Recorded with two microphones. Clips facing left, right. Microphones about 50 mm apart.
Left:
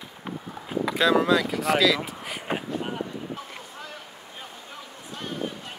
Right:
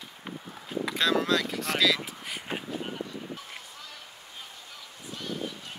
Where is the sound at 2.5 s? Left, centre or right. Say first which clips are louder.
Left 6 dB; left.